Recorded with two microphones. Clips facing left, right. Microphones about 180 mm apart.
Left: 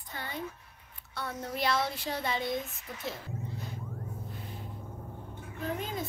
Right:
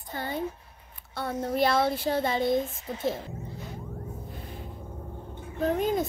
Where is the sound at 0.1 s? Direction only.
30° right (ahead or behind).